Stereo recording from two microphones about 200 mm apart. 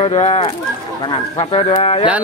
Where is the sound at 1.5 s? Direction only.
25° left (ahead or behind).